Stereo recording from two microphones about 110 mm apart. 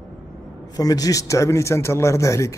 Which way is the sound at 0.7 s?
35° left (ahead or behind).